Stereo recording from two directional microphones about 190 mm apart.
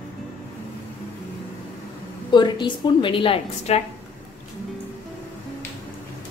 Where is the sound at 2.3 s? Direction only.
25° left (ahead or behind).